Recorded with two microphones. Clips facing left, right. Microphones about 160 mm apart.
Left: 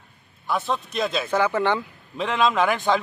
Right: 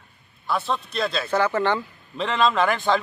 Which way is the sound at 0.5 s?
15° left (ahead or behind).